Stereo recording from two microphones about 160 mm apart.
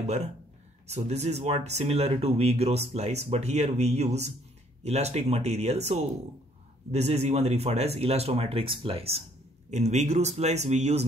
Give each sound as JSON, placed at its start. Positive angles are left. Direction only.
{"t": 0.8, "sound": "speech", "side_deg": -45}